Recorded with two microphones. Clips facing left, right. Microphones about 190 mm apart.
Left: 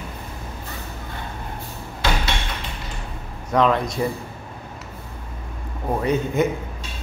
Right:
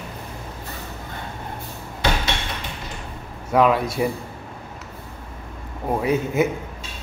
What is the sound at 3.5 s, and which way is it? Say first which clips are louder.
Speech: right 1 dB; 5° right (ahead or behind).